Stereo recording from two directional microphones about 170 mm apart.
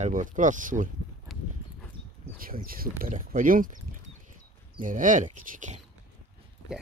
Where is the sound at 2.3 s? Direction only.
60° right (ahead or behind).